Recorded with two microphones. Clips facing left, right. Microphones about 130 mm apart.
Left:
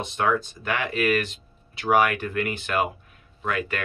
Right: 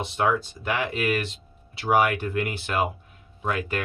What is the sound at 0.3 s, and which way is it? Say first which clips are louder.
Speech: left 1 dB; 25° right (ahead or behind).